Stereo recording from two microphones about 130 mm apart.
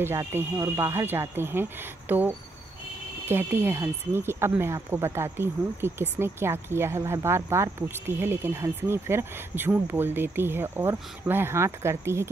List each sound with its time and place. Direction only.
0.0 s speech: 20° right (ahead or behind)